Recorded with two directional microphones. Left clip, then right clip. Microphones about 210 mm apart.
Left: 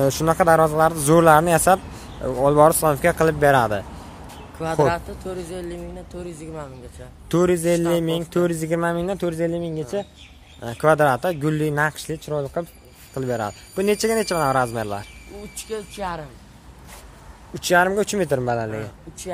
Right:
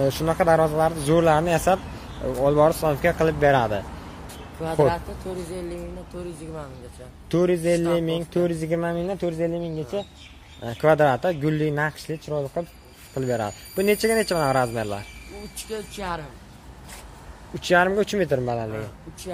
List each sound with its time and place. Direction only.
0.0 s speech: 20° left (ahead or behind)
4.8 s speech: 45° left (ahead or behind)
7.2 s speech: 20° left (ahead or behind)
10.6 s a man's voice: 10° left (ahead or behind)
13.1 s a man's voice: 10° left (ahead or behind)
15.5 s speech: 55° left (ahead or behind)
17.6 s a man's voice: 10° left (ahead or behind)